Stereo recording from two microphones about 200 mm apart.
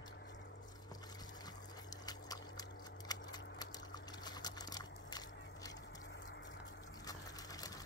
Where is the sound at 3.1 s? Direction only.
20° left (ahead or behind).